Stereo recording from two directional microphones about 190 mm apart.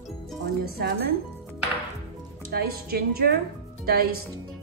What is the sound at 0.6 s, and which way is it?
Speech, 55° right (ahead or behind).